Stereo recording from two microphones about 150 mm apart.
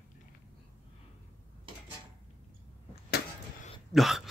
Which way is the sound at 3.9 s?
Centre (ahead or behind).